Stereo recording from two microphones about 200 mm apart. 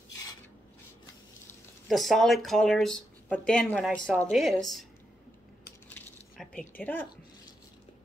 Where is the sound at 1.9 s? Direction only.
Centre (ahead or behind).